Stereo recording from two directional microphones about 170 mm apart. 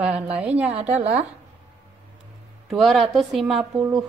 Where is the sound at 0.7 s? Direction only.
40° right (ahead or behind).